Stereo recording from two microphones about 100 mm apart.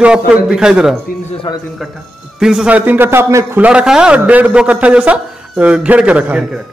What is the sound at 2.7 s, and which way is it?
Speech, 15° right (ahead or behind).